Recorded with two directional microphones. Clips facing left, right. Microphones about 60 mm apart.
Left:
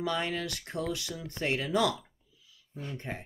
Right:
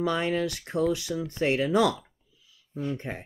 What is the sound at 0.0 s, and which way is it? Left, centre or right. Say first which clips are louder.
Speech: right 6 dB; right.